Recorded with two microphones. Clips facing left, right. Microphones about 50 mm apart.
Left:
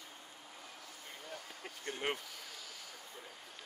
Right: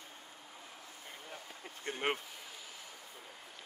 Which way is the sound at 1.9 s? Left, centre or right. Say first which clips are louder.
Right 3 dB; right.